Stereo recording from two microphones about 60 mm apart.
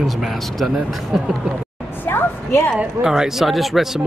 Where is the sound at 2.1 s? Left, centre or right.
Left.